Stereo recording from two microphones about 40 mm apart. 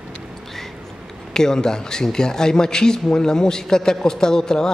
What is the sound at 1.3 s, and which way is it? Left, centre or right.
A woman's voice, centre.